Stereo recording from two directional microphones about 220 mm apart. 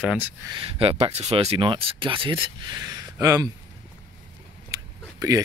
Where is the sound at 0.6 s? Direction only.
25° right (ahead or behind).